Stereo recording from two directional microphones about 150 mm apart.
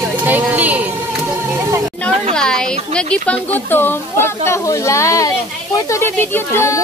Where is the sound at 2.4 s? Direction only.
5° left (ahead or behind).